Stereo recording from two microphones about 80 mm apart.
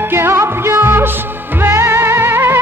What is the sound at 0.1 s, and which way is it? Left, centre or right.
Music, right.